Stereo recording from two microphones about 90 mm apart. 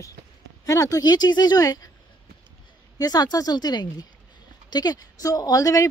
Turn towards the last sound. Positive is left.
turn(degrees=40)  # may be behind; listen again after turning